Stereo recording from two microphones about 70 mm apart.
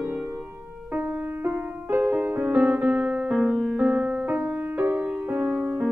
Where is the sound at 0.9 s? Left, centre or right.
Right.